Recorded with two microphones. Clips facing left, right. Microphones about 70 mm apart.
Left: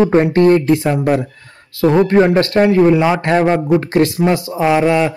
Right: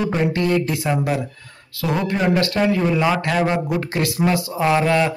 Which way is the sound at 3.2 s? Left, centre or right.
Left.